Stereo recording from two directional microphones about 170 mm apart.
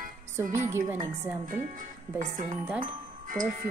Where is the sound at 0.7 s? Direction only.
15° right (ahead or behind).